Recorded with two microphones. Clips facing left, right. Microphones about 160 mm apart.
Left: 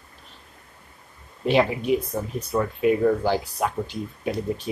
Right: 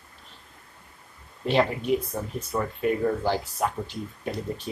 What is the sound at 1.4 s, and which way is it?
Speech, 10° left (ahead or behind).